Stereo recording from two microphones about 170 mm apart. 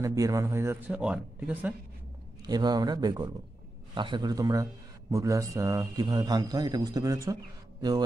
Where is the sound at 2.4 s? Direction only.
25° right (ahead or behind).